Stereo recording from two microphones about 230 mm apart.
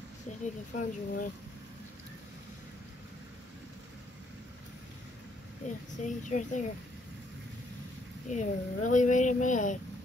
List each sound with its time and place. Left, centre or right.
0.7 s speech: left
5.7 s speech: left
8.3 s speech: left